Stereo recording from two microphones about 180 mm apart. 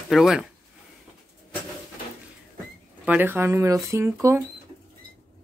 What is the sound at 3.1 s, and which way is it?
Speech, 10° right (ahead or behind).